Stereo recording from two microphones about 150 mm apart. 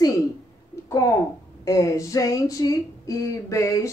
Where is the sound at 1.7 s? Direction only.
25° left (ahead or behind).